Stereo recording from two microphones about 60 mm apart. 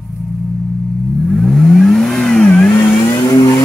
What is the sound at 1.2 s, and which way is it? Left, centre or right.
Vehicle, centre.